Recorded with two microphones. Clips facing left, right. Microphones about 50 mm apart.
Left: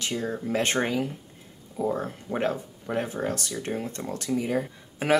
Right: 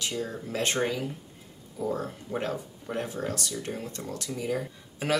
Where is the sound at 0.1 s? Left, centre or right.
Left.